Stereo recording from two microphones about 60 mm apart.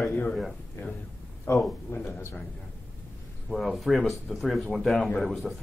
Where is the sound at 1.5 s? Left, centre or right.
Left.